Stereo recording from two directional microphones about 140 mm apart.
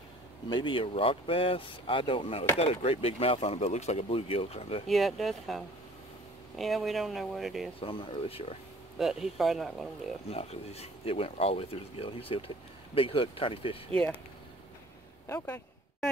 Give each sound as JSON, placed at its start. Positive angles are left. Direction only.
{"t": 0.5, "sound": "speech", "side_deg": 35}
{"t": 4.8, "sound": "speech", "side_deg": 0}
{"t": 6.6, "sound": "speech", "side_deg": 0}
{"t": 7.8, "sound": "speech", "side_deg": 40}
{"t": 8.9, "sound": "speech", "side_deg": -5}
{"t": 10.3, "sound": "speech", "side_deg": 45}
{"t": 15.2, "sound": "speech", "side_deg": 20}